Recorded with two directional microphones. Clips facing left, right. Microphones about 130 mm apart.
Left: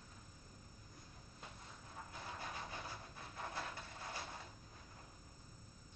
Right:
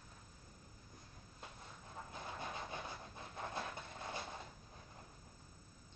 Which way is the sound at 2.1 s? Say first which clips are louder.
Right 2 dB; 20° right (ahead or behind).